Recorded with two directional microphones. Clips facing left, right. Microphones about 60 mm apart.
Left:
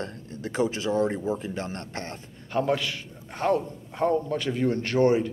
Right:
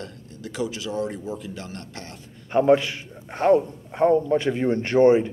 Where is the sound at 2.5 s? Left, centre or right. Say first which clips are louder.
Right 7 dB; right.